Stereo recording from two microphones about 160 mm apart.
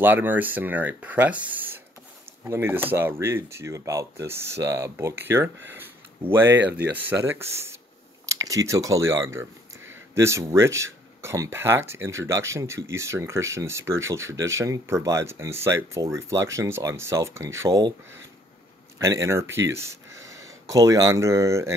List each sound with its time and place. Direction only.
0.0 s speech: 10° right (ahead or behind)
18.9 s speech: 20° right (ahead or behind)